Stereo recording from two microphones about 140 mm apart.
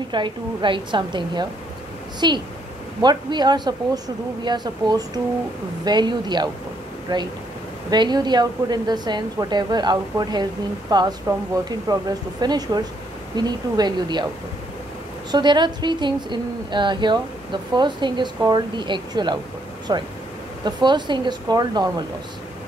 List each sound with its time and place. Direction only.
0.1 s a woman's voice: 35° right (ahead or behind)
15.3 s a woman's voice: 30° right (ahead or behind)